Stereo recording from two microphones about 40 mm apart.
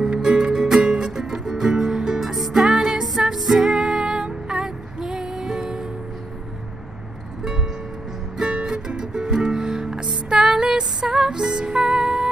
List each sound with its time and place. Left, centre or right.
0.0 s music: centre
8.5 s music: right